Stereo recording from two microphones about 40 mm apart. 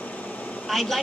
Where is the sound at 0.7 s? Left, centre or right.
Centre.